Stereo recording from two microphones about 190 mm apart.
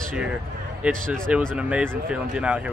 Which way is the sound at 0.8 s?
Centre (ahead or behind).